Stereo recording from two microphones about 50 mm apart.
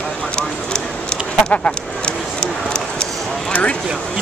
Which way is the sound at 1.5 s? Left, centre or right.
Centre.